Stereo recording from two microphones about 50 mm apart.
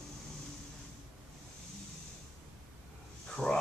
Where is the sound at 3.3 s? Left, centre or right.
Centre.